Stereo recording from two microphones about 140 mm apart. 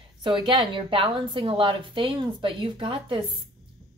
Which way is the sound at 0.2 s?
35° right (ahead or behind).